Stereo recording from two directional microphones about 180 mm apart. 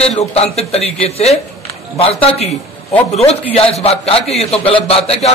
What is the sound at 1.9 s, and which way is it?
A man's voice, 30° left (ahead or behind).